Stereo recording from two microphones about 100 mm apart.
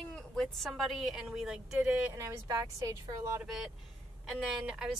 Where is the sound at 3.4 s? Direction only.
5° right (ahead or behind).